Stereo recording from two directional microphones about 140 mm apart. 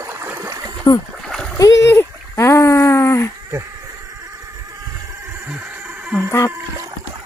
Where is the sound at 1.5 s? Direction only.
20° left (ahead or behind).